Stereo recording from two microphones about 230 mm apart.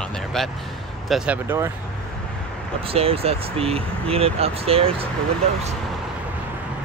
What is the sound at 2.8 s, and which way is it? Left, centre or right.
Speech, right.